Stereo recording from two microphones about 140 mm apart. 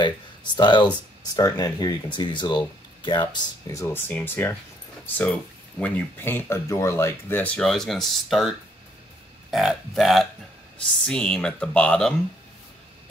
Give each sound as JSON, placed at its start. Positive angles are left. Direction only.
{"t": 0.6, "sound": "speech", "side_deg": 30}
{"t": 3.6, "sound": "speech", "side_deg": 20}